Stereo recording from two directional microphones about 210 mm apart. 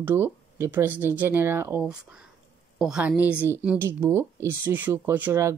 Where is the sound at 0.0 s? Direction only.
10° right (ahead or behind).